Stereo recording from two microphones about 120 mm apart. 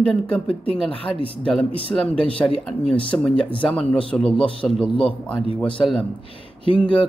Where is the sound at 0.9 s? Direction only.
50° left (ahead or behind).